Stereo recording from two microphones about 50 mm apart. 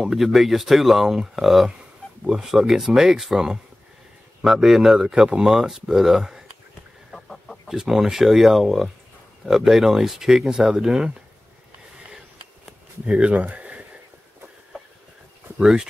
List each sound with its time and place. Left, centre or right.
0.0 s speech: centre
7.6 s speech: centre
13.0 s speech: right
15.6 s speech: centre